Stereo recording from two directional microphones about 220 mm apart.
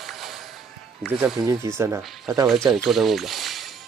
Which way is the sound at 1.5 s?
15° right (ahead or behind).